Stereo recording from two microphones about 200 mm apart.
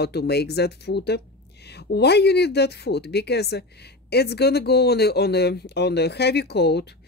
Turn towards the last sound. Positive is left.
turn(degrees=55)  # may be behind; listen again after turning